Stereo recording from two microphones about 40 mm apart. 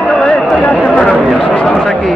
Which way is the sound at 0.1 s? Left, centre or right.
Left.